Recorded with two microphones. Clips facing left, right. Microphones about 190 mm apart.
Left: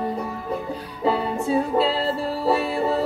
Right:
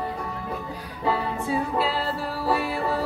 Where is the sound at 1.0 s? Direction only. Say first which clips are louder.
Left 4 dB; 25° left (ahead or behind).